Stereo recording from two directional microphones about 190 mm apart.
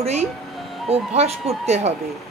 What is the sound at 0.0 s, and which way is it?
A woman's voice, 35° right (ahead or behind).